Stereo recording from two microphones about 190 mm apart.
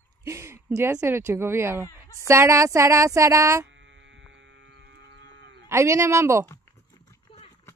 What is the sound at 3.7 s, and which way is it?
Livestock, 80° right.